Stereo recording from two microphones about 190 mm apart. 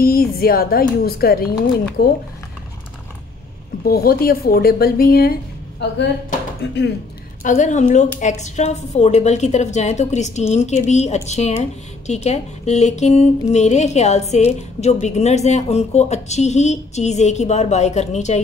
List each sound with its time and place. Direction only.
0.0 s speech: 50° left (ahead or behind)
3.8 s speech: 55° left (ahead or behind)
7.4 s speech: 40° left (ahead or behind)